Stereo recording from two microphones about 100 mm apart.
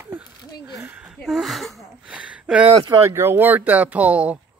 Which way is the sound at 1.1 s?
5° right (ahead or behind).